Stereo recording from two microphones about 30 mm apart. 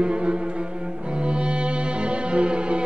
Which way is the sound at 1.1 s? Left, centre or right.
Right.